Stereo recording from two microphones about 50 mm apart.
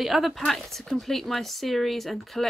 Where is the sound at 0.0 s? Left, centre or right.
Centre.